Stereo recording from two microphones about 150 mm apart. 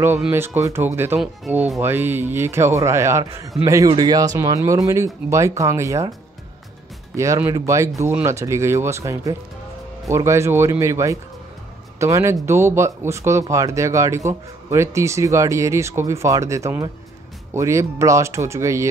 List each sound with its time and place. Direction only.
0.6 s a man's voice: 20° right (ahead or behind)
7.2 s speech: 15° right (ahead or behind)